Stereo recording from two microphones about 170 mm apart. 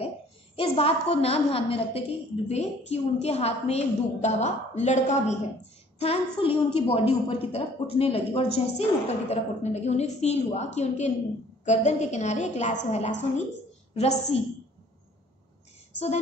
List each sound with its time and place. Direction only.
0.6 s a woman's voice: 35° left (ahead or behind)